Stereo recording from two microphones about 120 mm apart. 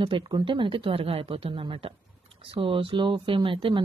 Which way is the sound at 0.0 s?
45° right (ahead or behind).